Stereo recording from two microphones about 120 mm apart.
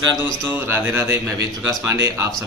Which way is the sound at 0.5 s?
20° right (ahead or behind).